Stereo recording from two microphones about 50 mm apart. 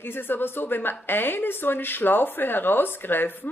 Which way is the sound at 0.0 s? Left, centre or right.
Left.